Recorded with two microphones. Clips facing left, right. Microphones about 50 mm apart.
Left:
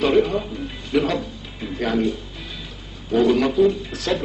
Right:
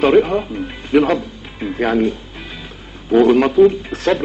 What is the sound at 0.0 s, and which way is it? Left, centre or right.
Speech, right.